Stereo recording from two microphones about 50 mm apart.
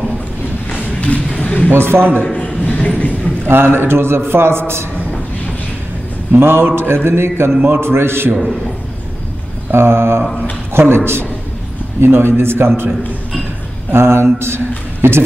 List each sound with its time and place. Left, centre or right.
1.4 s a sound: left
1.7 s a man's voice: right
2.4 s a sound: left
3.4 s a man's voice: right
6.3 s a man's voice: right
9.7 s a man's voice: right
12.0 s a man's voice: right
13.9 s mantra: right
15.0 s speech: right